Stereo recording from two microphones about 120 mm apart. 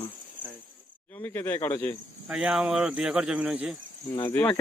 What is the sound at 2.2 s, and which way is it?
Speech, 10° right (ahead or behind).